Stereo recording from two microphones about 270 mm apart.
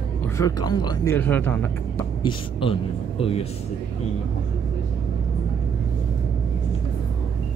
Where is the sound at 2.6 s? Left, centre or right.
Centre.